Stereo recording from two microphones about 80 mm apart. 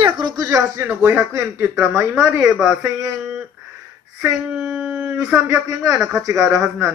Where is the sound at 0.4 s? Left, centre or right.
Right.